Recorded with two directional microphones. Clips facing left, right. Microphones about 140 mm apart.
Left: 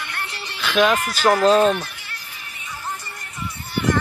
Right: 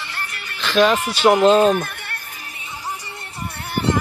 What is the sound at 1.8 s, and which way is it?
Music, 55° right (ahead or behind).